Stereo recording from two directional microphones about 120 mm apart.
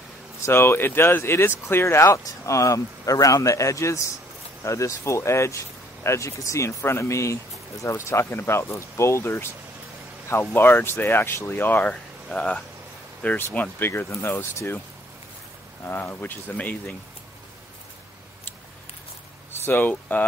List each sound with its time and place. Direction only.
0.4 s speech: 20° left (ahead or behind)
15.8 s speech: 15° left (ahead or behind)
19.5 s speech: 20° left (ahead or behind)